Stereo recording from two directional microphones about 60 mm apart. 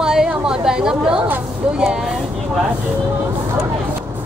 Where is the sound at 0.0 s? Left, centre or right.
Centre.